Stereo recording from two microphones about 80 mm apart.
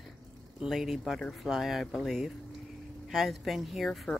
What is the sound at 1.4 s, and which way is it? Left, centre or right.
Speech, centre.